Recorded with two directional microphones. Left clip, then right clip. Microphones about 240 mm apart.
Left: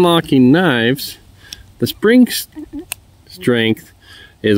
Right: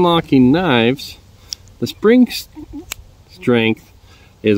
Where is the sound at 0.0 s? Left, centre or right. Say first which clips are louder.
Left 1 dB; left.